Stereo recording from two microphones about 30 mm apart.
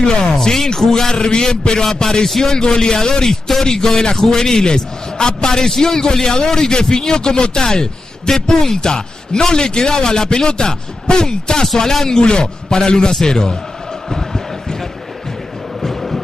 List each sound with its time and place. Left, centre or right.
0.2 s a sound: centre
0.7 s speech: centre
1.0 s a man's voice: left
2.2 s speech: centre
2.5 s a man's voice: left
3.3 s speech: centre
3.7 s a man's voice: left
12.2 s a man's voice: left
14.1 s chant: centre
15.8 s music: centre